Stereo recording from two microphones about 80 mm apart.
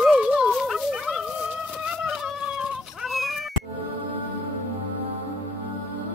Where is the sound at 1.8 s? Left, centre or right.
Centre.